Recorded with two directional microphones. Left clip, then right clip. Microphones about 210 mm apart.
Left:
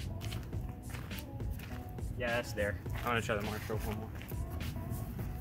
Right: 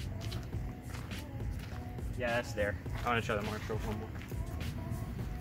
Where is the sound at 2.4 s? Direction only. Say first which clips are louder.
Right 1 dB; 35° left (ahead or behind).